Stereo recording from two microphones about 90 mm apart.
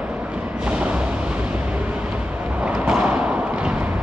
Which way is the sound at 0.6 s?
10° right (ahead or behind).